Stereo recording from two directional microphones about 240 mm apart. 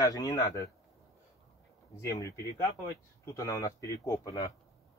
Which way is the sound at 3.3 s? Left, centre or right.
Centre.